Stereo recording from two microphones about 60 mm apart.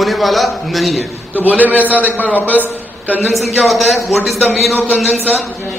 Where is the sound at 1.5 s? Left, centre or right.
Right.